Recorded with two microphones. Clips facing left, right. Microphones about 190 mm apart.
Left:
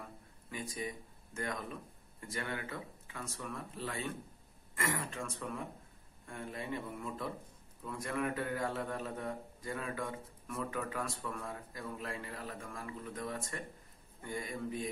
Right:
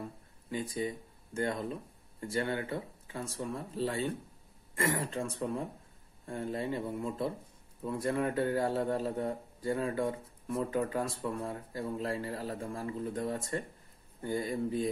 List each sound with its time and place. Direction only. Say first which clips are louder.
0.5 s a man's voice: right 7 dB; 30° right (ahead or behind)